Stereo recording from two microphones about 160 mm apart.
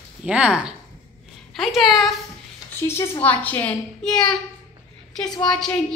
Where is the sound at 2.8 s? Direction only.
15° left (ahead or behind).